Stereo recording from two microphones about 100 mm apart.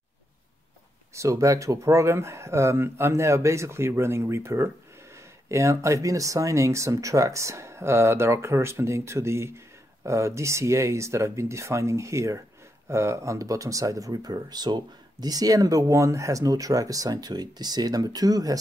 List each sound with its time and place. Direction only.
1.1 s speech: 30° right (ahead or behind)